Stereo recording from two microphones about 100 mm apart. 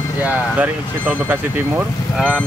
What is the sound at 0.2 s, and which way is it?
Speech, 15° right (ahead or behind).